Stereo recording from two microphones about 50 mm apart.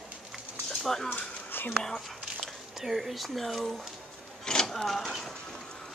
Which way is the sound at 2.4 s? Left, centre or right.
Centre.